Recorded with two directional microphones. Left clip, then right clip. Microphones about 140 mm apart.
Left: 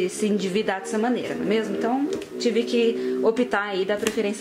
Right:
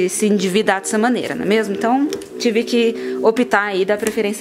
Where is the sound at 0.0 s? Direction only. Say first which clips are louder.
Right 7 dB; 30° right (ahead or behind).